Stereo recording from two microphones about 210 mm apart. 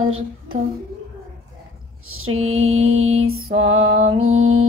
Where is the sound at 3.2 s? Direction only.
85° right.